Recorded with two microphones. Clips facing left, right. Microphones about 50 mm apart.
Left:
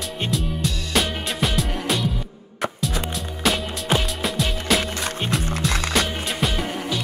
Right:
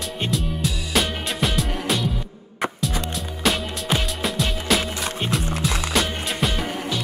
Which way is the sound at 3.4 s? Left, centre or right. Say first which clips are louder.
Left 1 dB; centre.